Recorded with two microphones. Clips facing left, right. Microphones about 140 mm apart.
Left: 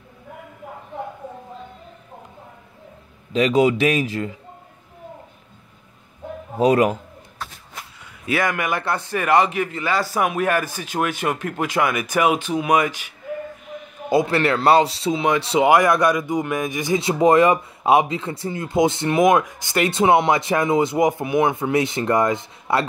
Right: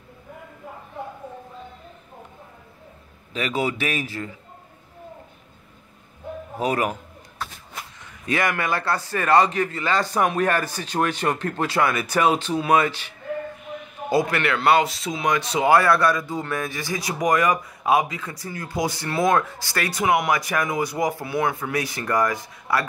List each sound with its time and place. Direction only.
3.3 s a man's voice: 30° left (ahead or behind)
6.6 s speech: 25° left (ahead or behind)
8.3 s speech: 15° left (ahead or behind)
14.0 s speech: 25° left (ahead or behind)